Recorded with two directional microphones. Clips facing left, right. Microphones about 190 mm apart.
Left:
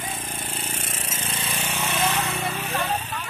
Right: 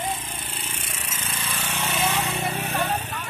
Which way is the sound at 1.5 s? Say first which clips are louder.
Even; 10° left (ahead or behind).